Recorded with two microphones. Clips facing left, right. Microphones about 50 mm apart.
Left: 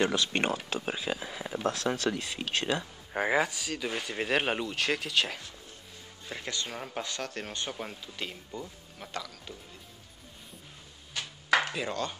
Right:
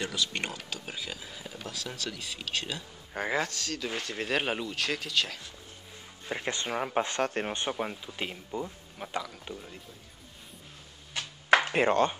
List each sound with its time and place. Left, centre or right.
0.0 s speech: left
1.2 s speech: left
1.6 s speech: left
3.1 s speech: centre
6.2 s speech: right
11.7 s speech: right